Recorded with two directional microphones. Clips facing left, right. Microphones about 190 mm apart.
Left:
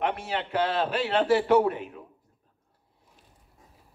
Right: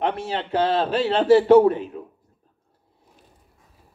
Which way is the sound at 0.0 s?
30° right (ahead or behind).